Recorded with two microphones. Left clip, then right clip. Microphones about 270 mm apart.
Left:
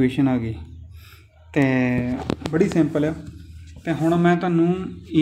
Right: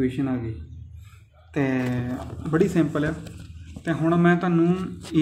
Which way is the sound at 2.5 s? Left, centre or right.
Centre.